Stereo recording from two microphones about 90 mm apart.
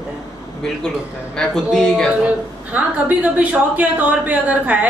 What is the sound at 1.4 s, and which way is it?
Speech, 5° left (ahead or behind).